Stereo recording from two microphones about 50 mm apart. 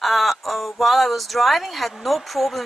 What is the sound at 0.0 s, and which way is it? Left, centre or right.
Speech, centre.